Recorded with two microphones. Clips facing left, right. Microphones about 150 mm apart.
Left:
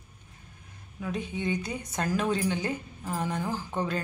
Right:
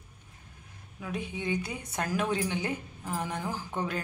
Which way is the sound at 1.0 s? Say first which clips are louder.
Left 3 dB; 10° right (ahead or behind).